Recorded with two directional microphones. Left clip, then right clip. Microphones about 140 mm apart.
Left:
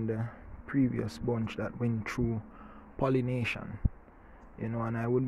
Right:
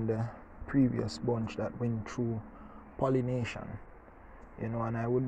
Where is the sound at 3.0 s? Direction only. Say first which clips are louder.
Left 1 dB; 35° left (ahead or behind).